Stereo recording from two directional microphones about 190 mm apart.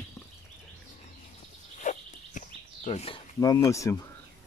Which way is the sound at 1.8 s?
40° left (ahead or behind).